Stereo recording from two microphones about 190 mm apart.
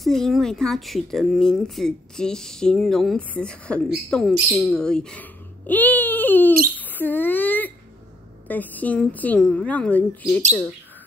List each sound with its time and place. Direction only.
0.0 s a woman's voice: centre (ahead or behind)